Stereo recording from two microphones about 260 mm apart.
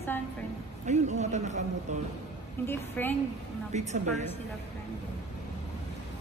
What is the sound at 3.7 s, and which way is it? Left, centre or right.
Speech, right.